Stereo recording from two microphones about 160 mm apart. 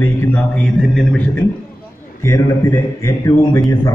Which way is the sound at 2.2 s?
15° left (ahead or behind).